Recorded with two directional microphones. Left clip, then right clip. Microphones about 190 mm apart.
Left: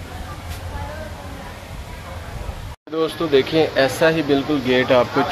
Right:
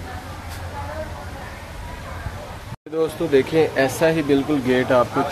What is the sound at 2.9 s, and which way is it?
Speech, 15° right (ahead or behind).